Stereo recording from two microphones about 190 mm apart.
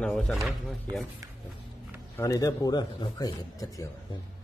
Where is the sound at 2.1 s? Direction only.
20° left (ahead or behind).